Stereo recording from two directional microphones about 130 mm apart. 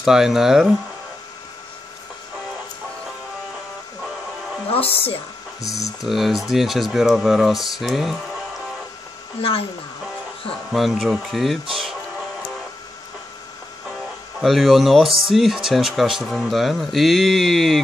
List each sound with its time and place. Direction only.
0.0 s speech: 5° right (ahead or behind)
4.6 s a woman's voice: 45° left (ahead or behind)
6.0 s speech: centre (ahead or behind)
9.4 s a woman's voice: 50° left (ahead or behind)
10.7 s speech: centre (ahead or behind)
11.7 s music: 5° right (ahead or behind)
14.4 s speech: centre (ahead or behind)